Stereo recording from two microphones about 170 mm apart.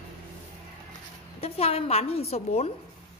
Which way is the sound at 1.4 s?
35° left (ahead or behind).